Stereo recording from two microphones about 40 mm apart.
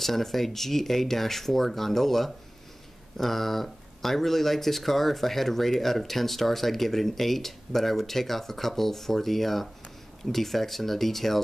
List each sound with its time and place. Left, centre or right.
0.0 s speech: centre